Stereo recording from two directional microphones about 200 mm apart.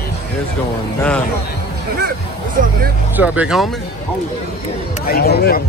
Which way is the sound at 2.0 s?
45° right (ahead or behind).